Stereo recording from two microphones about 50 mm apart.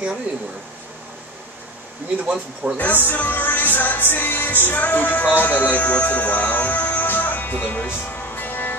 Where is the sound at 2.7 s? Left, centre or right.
Left.